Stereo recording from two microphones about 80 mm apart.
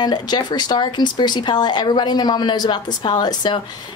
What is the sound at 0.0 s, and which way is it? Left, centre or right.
Speech, left.